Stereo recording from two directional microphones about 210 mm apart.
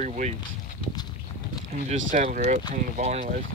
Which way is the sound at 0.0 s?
35° right (ahead or behind).